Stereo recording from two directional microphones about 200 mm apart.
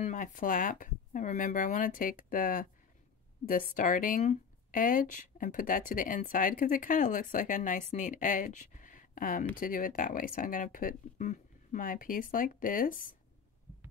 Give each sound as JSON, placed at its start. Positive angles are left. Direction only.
{"t": 0.0, "sound": "speech", "side_deg": 40}